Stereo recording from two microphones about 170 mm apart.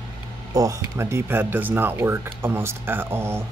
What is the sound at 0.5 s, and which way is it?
Speech, 20° right (ahead or behind).